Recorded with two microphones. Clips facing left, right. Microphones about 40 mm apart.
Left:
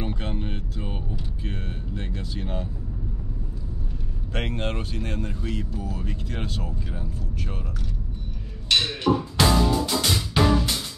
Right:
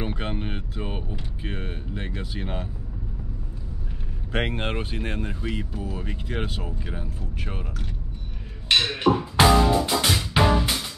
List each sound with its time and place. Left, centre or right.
0.0 s a sound: right
4.3 s speech: right
8.8 s music: right